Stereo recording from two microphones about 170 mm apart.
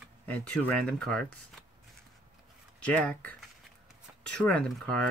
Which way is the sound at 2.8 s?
5° left (ahead or behind).